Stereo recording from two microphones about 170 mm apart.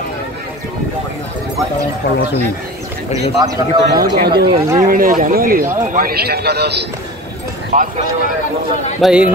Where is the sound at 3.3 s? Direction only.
25° right (ahead or behind).